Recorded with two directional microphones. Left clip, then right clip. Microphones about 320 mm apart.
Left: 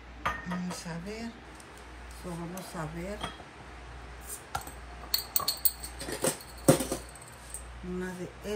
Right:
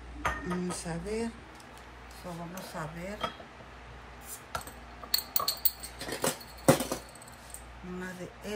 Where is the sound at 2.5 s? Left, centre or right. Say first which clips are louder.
Even; centre.